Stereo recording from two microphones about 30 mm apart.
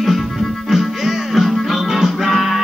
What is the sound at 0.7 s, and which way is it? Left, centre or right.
Music, centre.